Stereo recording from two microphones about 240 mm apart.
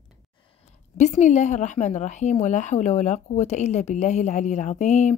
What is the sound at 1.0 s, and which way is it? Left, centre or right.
A woman's voice, left.